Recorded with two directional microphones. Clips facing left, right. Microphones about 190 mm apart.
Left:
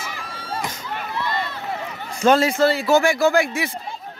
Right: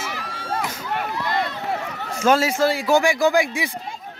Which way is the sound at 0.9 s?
75° right (ahead or behind).